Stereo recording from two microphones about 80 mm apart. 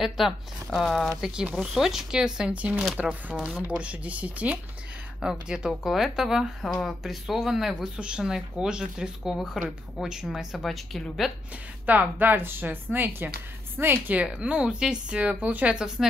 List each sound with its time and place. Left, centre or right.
0.7 s a woman's voice: centre
11.8 s a woman's voice: right
14.2 s speech: centre